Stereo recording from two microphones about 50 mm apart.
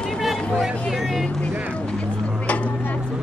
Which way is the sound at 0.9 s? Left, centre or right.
Centre.